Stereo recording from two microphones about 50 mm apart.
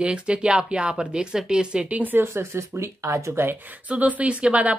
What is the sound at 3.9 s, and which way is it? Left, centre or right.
Speech, right.